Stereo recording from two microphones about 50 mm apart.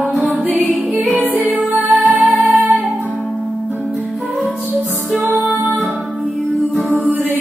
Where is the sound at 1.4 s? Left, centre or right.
Right.